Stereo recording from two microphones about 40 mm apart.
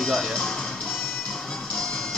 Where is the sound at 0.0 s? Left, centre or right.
Centre.